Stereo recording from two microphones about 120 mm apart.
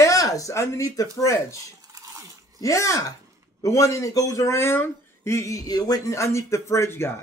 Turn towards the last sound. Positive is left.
turn(degrees=20)  # may be behind; listen again after turning